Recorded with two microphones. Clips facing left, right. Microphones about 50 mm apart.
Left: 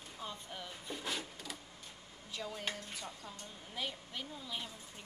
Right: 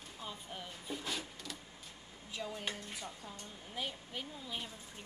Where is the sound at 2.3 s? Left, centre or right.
Centre.